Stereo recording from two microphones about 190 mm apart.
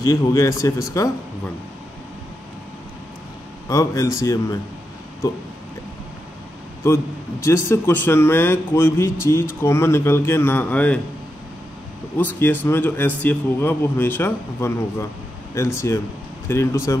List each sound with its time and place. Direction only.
0.0 s a man's voice: 15° left (ahead or behind)
3.6 s a man's voice: 15° left (ahead or behind)
6.8 s a man's voice: 15° left (ahead or behind)
12.2 s a man's voice: 10° left (ahead or behind)